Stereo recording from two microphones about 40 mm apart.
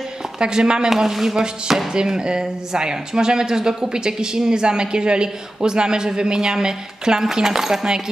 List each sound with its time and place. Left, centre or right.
0.4 s speech: centre